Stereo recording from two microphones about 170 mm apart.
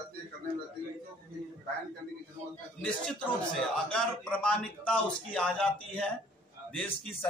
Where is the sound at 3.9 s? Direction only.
5° left (ahead or behind).